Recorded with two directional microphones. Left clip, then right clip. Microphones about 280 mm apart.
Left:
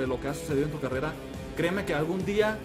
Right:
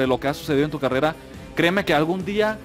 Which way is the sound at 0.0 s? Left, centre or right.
Right.